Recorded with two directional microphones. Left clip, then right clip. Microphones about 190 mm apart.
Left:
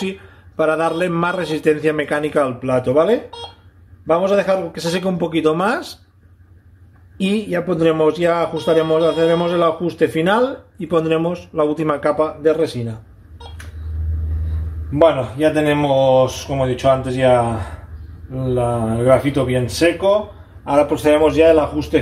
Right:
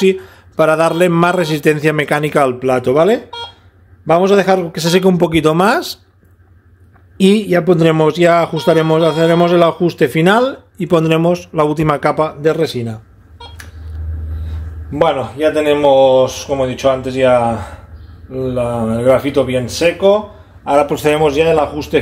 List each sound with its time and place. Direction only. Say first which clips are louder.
0.0 s speech: right 13 dB; 60° right (ahead or behind)
7.2 s speech: right 8 dB; 60° right (ahead or behind)
15.0 s speech: even; 45° right (ahead or behind)